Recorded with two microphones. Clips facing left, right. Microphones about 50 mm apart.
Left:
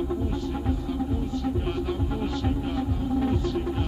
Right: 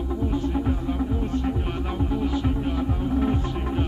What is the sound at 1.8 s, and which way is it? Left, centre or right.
Music, right.